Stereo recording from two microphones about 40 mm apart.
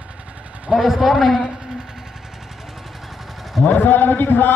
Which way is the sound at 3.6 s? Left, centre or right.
Left.